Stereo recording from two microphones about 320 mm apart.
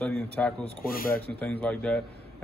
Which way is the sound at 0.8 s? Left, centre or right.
Left.